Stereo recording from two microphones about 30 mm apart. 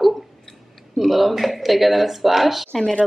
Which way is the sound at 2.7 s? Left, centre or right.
Centre.